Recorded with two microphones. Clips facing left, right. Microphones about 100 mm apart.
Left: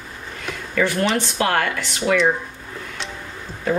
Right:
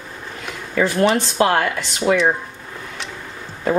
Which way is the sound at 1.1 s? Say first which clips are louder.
Right 3 dB; 30° right (ahead or behind).